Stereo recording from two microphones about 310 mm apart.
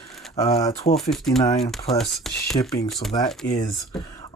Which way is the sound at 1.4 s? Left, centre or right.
Centre.